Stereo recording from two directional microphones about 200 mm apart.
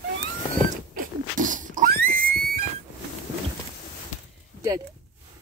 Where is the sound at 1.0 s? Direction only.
40° right (ahead or behind).